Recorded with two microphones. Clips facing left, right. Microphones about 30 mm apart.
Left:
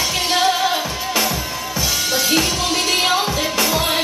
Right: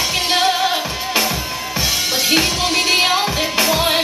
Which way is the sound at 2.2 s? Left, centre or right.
Centre.